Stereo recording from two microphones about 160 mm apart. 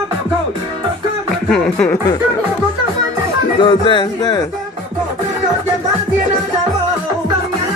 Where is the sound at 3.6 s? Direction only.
30° left (ahead or behind).